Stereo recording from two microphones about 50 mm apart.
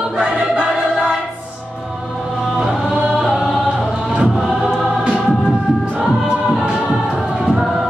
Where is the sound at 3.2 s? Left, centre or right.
Centre.